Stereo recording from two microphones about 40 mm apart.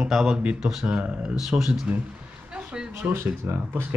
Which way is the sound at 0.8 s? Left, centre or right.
Right.